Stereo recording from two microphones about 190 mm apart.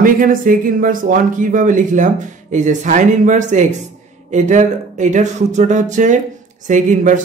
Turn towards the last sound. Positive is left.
turn(degrees=-40)  # may be behind; listen again after turning